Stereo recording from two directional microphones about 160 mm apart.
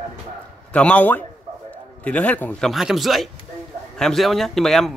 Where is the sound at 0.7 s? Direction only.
10° left (ahead or behind).